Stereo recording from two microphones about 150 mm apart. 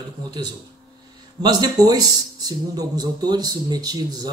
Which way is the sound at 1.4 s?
25° right (ahead or behind).